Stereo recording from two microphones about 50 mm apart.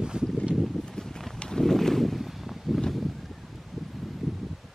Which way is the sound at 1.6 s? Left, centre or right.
Centre.